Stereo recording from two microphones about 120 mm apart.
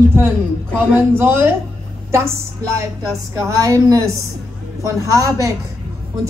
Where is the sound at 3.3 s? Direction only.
25° right (ahead or behind).